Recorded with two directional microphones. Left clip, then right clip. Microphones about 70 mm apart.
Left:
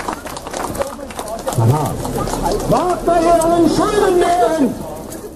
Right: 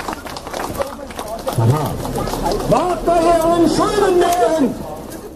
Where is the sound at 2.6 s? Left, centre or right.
Right.